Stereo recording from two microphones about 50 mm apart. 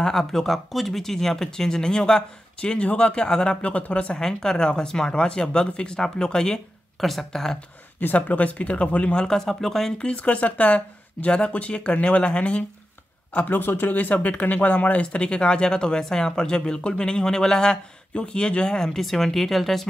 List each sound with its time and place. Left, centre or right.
0.0 s speech: centre; by 4.2 s left
4.2 s speech: centre
8.0 s speech: left; by 9.4 s centre
9.4 s speech: centre
10.0 s speech: left
13.5 s speech: left; by 19.9 s centre